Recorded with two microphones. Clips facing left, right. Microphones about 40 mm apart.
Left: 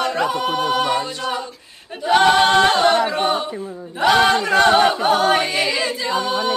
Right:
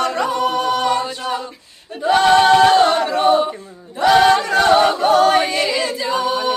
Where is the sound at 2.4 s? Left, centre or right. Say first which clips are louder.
Right 3 dB; left.